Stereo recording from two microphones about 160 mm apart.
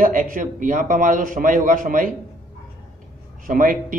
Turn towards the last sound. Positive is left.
turn(degrees=-55)  # may be behind; listen again after turning